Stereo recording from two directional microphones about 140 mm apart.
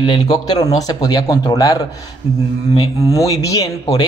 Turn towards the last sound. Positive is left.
turn(degrees=25)  # may be behind; listen again after turning